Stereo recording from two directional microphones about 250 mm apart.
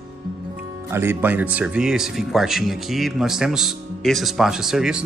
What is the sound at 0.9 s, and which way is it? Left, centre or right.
Speech, centre.